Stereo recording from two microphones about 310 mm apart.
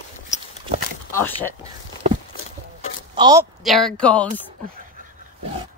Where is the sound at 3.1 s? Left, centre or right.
Centre.